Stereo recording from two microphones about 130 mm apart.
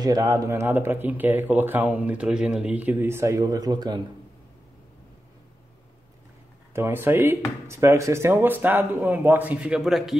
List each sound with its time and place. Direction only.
0.0 s speech: 30° right (ahead or behind)
6.7 s speech: 20° right (ahead or behind); by 10.1 s centre (ahead or behind)